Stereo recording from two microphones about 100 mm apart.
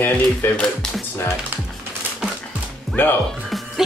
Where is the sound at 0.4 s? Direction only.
25° left (ahead or behind).